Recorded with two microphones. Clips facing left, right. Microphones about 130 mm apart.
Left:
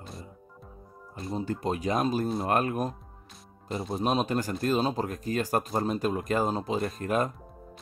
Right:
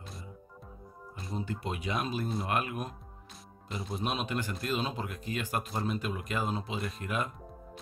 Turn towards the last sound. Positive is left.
turn(degrees=40)  # may be behind; listen again after turning